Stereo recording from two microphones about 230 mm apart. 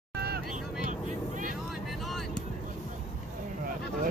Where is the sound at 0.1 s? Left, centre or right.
Right.